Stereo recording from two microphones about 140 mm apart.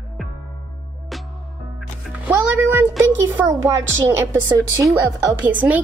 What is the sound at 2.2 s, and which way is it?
Music, 15° right (ahead or behind).